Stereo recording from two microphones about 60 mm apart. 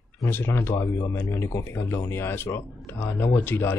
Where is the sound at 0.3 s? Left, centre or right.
Left.